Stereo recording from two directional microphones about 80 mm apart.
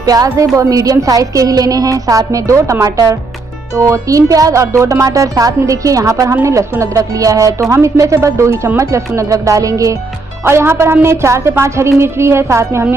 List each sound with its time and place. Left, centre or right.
0.0 s a woman's voice: right
10.4 s a woman's voice: right